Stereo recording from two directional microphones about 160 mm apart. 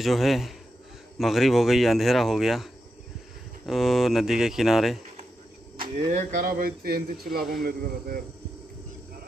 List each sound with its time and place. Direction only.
0.0 s speech: centre (ahead or behind)
5.8 s speech: 40° right (ahead or behind)
6.3 s speech: 60° right (ahead or behind)